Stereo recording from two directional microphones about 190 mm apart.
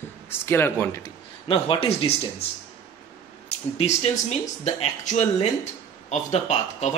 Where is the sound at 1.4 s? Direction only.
30° left (ahead or behind).